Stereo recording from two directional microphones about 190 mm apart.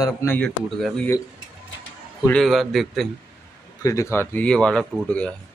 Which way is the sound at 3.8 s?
15° left (ahead or behind).